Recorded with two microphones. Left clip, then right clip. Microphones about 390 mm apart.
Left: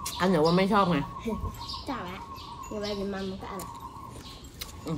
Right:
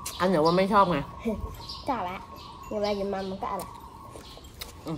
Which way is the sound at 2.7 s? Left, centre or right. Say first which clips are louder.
Right 6 dB; right.